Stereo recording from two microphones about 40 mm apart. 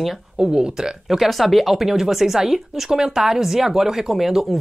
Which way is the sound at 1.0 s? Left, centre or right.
Centre.